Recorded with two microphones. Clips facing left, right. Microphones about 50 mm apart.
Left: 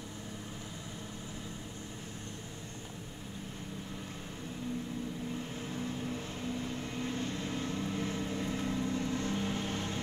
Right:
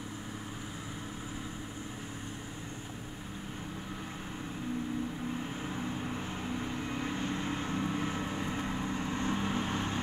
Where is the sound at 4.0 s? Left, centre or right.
Right.